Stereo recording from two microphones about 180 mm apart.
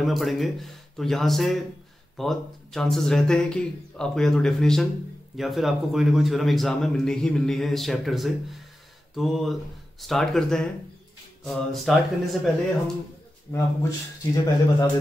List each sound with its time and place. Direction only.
0.0 s a man's voice: centre (ahead or behind)
13.5 s speech: 20° left (ahead or behind)